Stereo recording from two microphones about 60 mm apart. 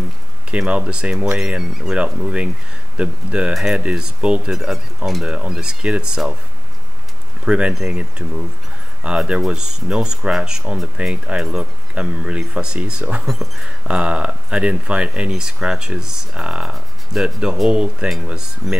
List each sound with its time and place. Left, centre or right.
0.5 s speech: centre
3.5 s speech: centre
4.5 s speech: centre
5.2 s speech: centre
7.4 s speech: centre
13.2 s speech: centre
13.8 s speech: centre
16.7 s music: centre
17.6 s speech: centre